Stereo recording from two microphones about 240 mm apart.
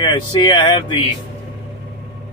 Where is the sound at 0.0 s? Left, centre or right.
Left.